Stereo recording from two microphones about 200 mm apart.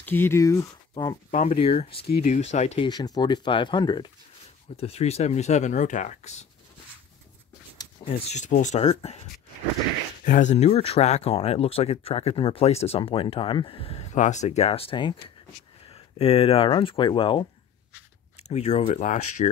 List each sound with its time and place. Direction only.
0.0 s speech: 10° left (ahead or behind)
1.3 s speech: 40° left (ahead or behind)
1.6 s speech: 30° left (ahead or behind)
2.9 s speech: 20° left (ahead or behind)
7.7 s speech: 20° left (ahead or behind)
10.2 s speech: 40° left (ahead or behind)